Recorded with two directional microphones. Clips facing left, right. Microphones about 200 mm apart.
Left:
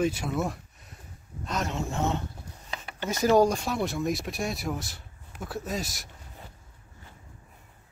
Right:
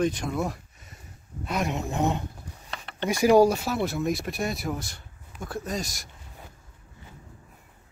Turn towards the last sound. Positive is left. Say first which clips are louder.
# right 1 dB
turn(degrees=0)  # may be behind; listen again after turning